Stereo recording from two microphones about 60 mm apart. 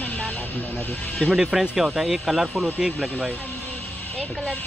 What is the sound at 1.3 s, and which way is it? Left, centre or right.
Speech, centre.